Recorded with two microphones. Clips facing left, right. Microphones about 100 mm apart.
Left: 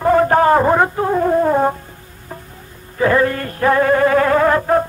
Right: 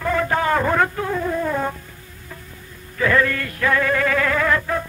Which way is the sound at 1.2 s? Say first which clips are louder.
Left 9 dB; 45° left (ahead or behind).